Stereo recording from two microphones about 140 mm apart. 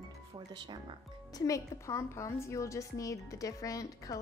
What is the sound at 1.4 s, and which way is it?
A woman's voice, 20° left (ahead or behind).